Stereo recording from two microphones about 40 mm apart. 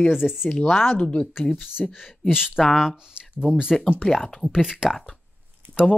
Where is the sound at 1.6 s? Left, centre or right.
Centre.